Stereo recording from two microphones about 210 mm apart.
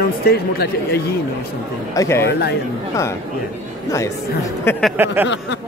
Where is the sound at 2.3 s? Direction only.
50° left (ahead or behind).